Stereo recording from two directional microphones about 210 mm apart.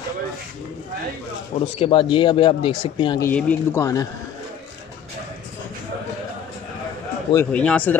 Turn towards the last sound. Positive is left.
turn(degrees=5)  # may be behind; listen again after turning